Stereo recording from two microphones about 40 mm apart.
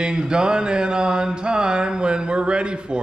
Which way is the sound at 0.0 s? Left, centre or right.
Centre.